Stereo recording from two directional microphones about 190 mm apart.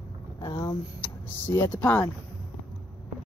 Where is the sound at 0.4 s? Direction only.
20° left (ahead or behind).